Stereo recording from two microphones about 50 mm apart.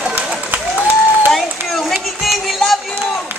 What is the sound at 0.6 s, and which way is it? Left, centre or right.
Applause, centre.